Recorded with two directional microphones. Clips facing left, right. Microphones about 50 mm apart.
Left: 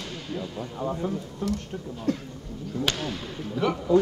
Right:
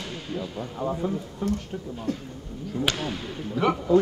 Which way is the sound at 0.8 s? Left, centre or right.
Right.